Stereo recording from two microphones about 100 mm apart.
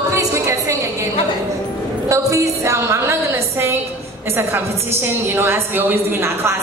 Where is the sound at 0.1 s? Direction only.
30° right (ahead or behind).